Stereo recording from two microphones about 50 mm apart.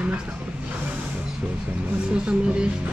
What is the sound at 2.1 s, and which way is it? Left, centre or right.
Speech, right.